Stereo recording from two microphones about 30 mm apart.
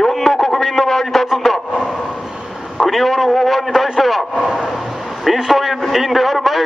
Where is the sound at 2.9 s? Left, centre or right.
Centre.